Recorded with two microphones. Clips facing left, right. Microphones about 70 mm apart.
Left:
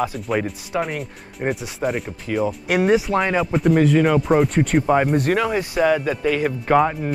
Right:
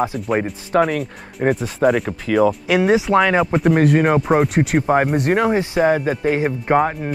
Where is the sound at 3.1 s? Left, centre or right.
Right.